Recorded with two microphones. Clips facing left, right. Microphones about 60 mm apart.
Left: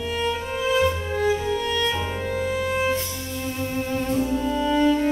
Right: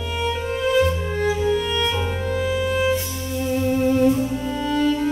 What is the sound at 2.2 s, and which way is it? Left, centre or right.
Music, right.